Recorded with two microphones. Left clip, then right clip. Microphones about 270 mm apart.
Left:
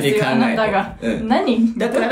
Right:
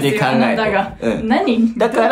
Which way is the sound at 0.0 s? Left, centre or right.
Centre.